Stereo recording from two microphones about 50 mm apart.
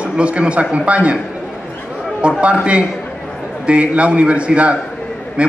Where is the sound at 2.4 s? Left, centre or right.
Right.